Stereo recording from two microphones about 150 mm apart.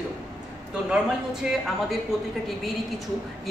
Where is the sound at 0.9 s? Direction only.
5° right (ahead or behind).